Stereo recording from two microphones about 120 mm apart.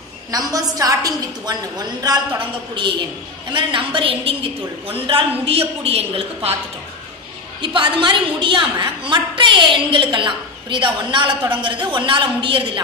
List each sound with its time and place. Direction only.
0.3 s a woman's voice: 30° right (ahead or behind); by 6.5 s 55° right (ahead or behind)
7.6 s a woman's voice: 45° right (ahead or behind)